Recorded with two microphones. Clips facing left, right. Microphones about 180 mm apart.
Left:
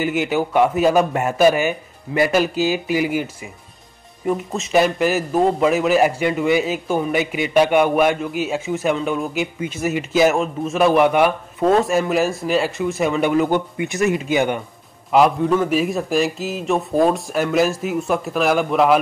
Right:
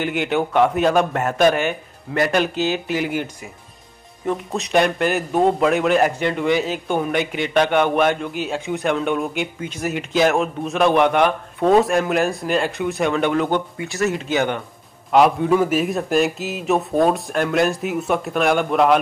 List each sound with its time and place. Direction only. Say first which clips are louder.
0.0 s a man's voice: left 1 dB; 5° left (ahead or behind)
4.3 s a man's voice: left 1 dB; centre (ahead or behind)
13.8 s a man's voice: left 4 dB; 20° left (ahead or behind); by 18.9 s centre (ahead or behind)